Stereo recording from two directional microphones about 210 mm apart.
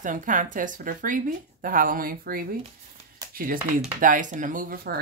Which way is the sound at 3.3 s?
40° right (ahead or behind).